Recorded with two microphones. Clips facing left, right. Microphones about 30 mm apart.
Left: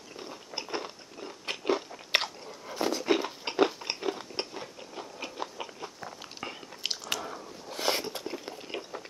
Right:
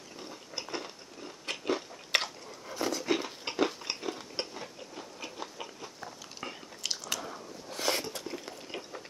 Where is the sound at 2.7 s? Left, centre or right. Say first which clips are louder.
Left 3 dB; centre.